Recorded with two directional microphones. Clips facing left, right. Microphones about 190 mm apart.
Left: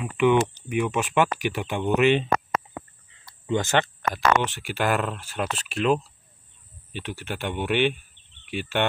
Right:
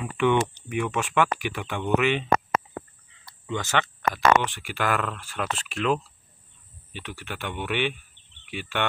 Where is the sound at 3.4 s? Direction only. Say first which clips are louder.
Left 4 dB; 30° left (ahead or behind).